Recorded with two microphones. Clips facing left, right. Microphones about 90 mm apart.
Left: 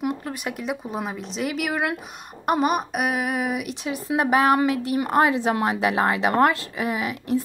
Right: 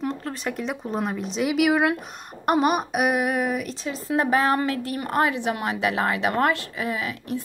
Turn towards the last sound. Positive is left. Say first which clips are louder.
# left 4 dB
turn(degrees=25)  # may be behind; listen again after turning